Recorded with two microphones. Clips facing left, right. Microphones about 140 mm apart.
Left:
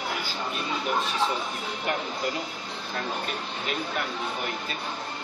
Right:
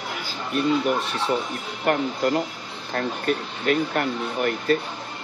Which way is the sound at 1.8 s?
55° right (ahead or behind).